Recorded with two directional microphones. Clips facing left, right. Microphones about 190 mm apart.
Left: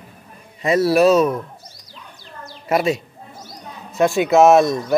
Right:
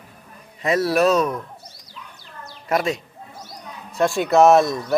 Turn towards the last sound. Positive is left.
turn(degrees=0)  # may be behind; listen again after turning